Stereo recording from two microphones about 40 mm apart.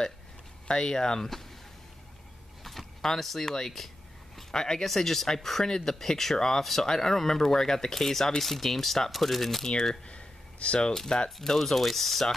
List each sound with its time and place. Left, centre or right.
0.7 s speech: centre
3.0 s speech: centre
4.4 s a sound: centre
4.8 s speech: centre
6.6 s speech: centre
9.7 s speech: centre
10.0 s a sound: left
11.2 s speech: centre